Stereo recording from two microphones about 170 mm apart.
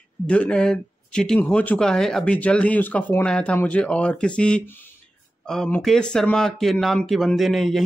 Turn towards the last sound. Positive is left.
turn(degrees=0)  # may be behind; listen again after turning